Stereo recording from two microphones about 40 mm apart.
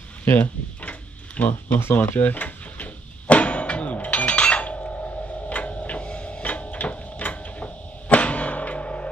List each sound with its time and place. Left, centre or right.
0.4 s tick-tock: left
1.5 s speech: left
2.0 s speech: left
2.4 s a sound: left